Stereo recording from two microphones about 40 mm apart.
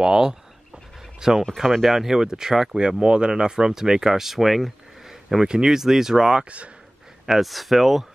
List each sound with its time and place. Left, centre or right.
0.0 s speech: centre
1.6 s speech: centre
5.1 s speech: centre
7.2 s speech: centre